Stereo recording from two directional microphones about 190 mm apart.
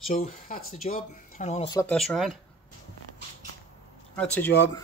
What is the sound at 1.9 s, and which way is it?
Speech, centre (ahead or behind).